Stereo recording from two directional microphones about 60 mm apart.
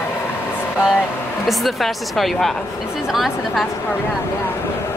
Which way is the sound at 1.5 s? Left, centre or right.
Centre.